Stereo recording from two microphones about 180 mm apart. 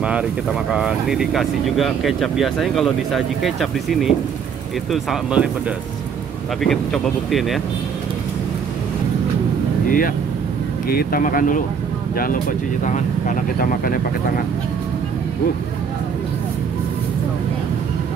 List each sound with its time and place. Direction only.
0.0 s speech: 5° right (ahead or behind)
6.6 s speech: centre (ahead or behind)
9.8 s speech: 50° left (ahead or behind)